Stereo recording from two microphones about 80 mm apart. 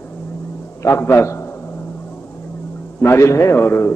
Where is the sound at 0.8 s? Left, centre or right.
Left.